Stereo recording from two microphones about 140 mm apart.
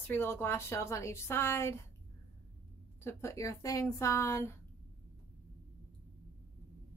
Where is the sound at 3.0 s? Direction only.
20° left (ahead or behind).